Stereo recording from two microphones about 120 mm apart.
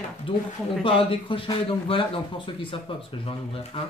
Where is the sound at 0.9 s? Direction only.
50° left (ahead or behind).